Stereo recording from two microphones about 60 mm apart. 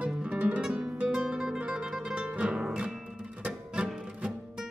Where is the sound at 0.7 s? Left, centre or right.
Centre.